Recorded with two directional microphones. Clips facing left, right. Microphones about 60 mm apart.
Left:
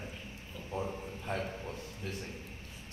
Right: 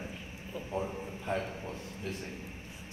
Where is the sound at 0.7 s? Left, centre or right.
Centre.